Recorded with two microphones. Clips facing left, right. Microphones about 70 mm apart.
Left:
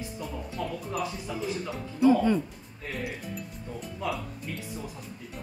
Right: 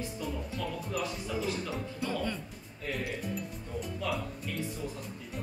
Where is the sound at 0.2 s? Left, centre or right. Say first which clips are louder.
Left 3 dB; centre.